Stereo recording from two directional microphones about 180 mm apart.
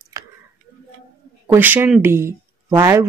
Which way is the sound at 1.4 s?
10° right (ahead or behind).